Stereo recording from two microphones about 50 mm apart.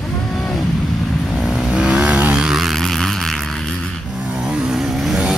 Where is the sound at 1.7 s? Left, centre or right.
Centre.